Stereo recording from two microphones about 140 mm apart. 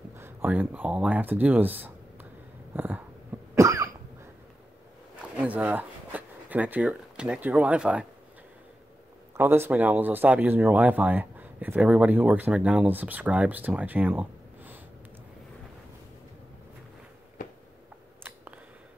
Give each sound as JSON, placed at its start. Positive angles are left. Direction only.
{"t": 0.1, "sound": "speech", "side_deg": -15}
{"t": 2.7, "sound": "a sound", "side_deg": -15}
{"t": 3.5, "sound": "cough", "side_deg": -25}
{"t": 5.4, "sound": "speech", "side_deg": -10}
{"t": 9.4, "sound": "speech", "side_deg": -15}